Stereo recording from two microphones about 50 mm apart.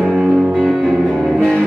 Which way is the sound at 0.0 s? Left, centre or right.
Centre.